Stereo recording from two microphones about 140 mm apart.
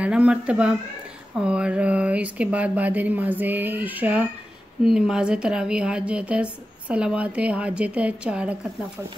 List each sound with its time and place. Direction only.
0.0 s a woman's voice: 5° right (ahead or behind)